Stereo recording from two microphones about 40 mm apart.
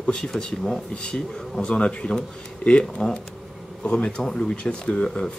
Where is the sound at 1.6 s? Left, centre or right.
Left.